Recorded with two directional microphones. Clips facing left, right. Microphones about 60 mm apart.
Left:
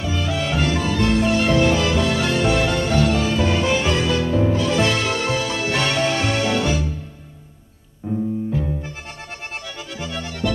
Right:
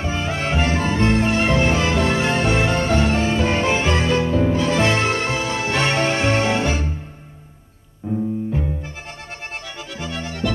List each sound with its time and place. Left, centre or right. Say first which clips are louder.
0.0 s music: even; right